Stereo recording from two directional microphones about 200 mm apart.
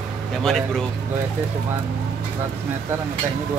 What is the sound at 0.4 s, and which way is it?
Speech, 5° left (ahead or behind).